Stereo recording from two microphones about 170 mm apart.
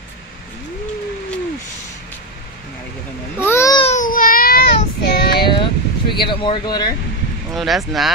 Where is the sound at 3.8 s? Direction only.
40° left (ahead or behind).